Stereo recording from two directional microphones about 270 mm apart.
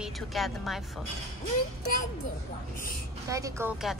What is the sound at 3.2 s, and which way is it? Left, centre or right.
Speech, centre.